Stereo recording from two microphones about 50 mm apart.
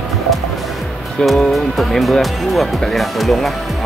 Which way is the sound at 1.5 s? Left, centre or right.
Centre.